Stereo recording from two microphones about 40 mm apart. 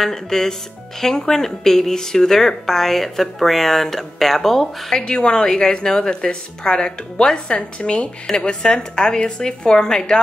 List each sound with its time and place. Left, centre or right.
0.0 s a woman's voice: centre
4.9 s a woman's voice: left